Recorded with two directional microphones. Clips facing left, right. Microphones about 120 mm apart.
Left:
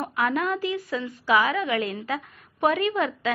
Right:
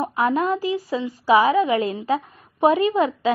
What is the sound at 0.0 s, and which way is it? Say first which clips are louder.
A woman's voice: right 5 dB; 30° right (ahead or behind).